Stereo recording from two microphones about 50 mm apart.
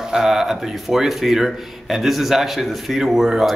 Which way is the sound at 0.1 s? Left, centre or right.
Centre.